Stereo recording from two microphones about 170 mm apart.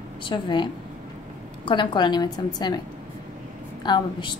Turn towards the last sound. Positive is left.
turn(degrees=25)  # may be behind; listen again after turning